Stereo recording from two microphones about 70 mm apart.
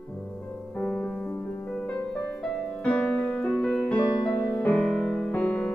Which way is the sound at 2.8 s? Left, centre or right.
Centre.